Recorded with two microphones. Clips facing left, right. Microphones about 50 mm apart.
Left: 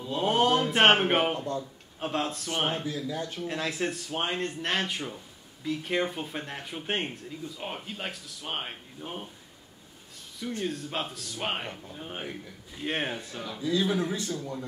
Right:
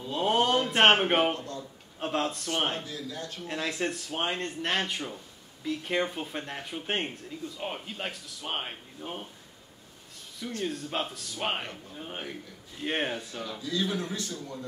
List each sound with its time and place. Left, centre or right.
0.0 s a man's voice: centre
3.3 s speech: centre
10.6 s speech: centre
13.6 s a man's voice: centre